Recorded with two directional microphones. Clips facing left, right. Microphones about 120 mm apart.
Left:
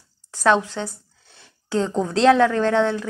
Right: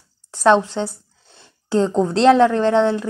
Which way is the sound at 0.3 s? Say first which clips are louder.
Right 4 dB; 20° right (ahead or behind).